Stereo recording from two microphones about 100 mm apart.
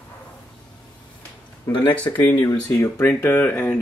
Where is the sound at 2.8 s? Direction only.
25° left (ahead or behind).